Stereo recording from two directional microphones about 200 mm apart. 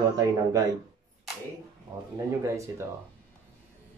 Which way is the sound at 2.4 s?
15° right (ahead or behind).